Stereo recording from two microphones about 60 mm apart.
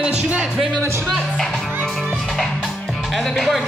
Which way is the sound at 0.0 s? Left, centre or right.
Centre.